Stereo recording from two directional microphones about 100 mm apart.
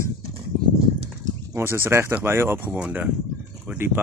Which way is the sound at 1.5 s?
25° right (ahead or behind).